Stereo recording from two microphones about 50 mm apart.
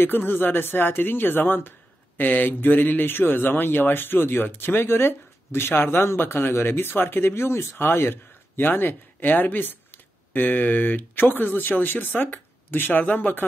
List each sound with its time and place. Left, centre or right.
0.0 s a man's voice: left